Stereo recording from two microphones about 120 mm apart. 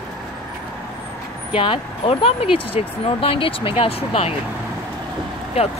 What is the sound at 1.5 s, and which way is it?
Speech, 50° left (ahead or behind).